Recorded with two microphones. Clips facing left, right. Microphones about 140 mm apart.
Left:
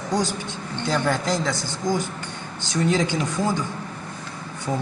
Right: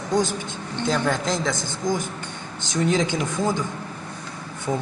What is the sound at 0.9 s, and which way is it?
Speech, 5° left (ahead or behind).